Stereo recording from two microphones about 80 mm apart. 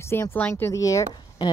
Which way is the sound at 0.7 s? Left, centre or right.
Left.